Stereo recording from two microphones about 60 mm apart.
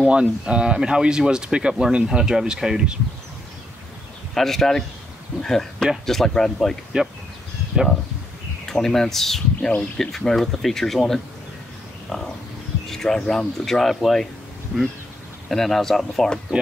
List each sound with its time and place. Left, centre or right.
0.0 s speech: centre
4.3 s speech: centre
8.6 s speech: centre
9.6 s speech: centre
9.9 s speech: centre
14.7 s speech: centre
15.4 s speech: centre